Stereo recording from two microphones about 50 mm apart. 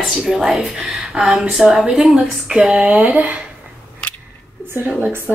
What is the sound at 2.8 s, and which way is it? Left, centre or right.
Speech, right.